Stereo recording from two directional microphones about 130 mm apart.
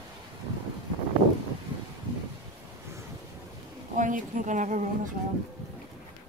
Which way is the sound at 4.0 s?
85° right.